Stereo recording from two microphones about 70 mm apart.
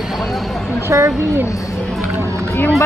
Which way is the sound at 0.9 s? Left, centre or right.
Right.